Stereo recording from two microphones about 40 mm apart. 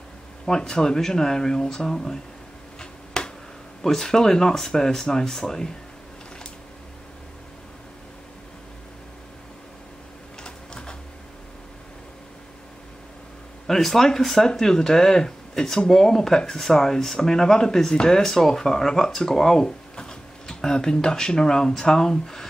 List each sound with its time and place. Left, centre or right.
0.5 s speech: centre
2.8 s finger snapping: centre
3.8 s speech: centre
10.4 s typewriter: left
13.7 s speech: centre